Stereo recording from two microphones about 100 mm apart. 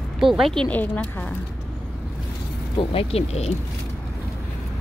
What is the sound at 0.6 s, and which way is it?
Speech, 15° left (ahead or behind).